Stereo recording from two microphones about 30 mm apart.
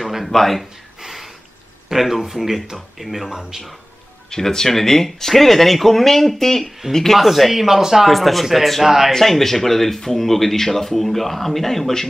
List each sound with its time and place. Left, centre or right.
0.3 s speech: centre
1.0 s a sound: centre
1.9 s speech: centre
3.3 s speech: centre
4.3 s speech: centre
7.2 s speech: centre
7.6 s speech: centre
8.1 s speech: centre
8.8 s speech: centre
9.1 s speech: centre